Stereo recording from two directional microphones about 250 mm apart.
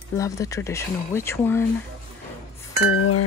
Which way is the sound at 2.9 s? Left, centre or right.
Left.